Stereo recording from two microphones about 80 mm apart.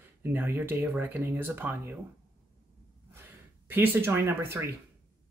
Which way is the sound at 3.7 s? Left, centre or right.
Right.